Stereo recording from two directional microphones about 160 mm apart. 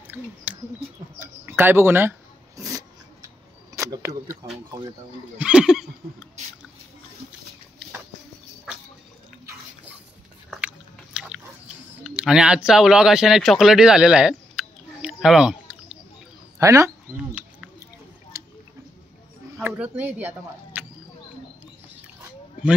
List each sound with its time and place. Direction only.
0.1 s a sound: 10° right (ahead or behind)
1.2 s speech: 15° right (ahead or behind)
5.4 s neigh: 5° right (ahead or behind)
11.1 s biting: 5° right (ahead or behind)
12.0 s speech: 5° right (ahead or behind)
16.5 s speech: 20° right (ahead or behind)
17.3 s a sound: 5° right (ahead or behind)
19.6 s speech: 10° right (ahead or behind)